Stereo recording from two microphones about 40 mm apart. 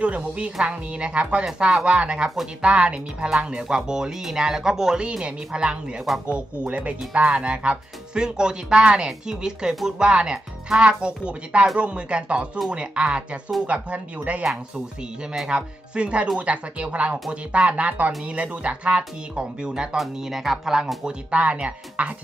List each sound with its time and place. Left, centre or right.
0.0 s speech: right
2.0 s speech: centre
2.6 s speech: right
5.2 s speech: right
10.8 s speech: right
15.4 s speech: right
20.0 s speech: centre
21.3 s speech: right